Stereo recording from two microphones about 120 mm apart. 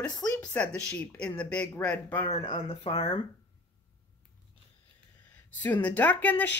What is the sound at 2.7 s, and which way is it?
Speech, 60° left (ahead or behind).